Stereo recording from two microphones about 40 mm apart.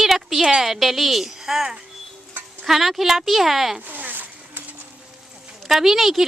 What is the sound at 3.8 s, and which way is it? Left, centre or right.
Zipper, right.